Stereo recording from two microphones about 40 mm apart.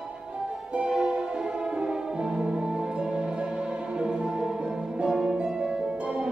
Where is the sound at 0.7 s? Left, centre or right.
Right.